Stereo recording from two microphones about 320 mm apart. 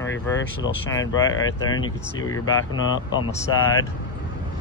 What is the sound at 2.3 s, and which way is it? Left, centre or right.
Speech, left.